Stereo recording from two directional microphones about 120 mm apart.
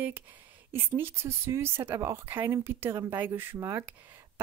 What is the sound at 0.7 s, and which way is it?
A woman's voice, 15° right (ahead or behind).